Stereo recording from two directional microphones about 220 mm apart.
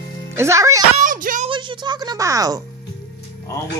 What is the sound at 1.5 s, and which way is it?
Speech, 20° right (ahead or behind).